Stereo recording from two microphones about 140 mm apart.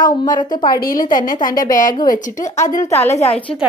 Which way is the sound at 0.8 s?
85° left.